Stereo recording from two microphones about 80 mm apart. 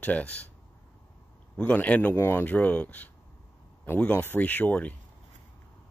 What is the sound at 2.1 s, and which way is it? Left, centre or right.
Speech, left.